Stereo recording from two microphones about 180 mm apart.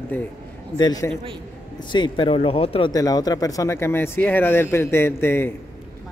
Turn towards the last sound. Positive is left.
turn(degrees=15)  # may be behind; listen again after turning